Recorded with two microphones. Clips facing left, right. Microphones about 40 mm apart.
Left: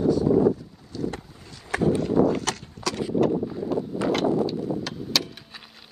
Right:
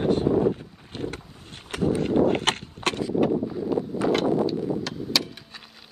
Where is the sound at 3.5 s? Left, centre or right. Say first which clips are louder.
Right 1 dB; centre.